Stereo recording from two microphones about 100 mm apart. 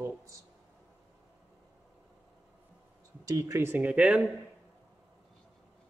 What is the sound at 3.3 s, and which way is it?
Speech, 30° right (ahead or behind).